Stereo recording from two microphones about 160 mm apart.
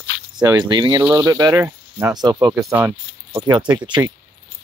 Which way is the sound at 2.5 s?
15° right (ahead or behind).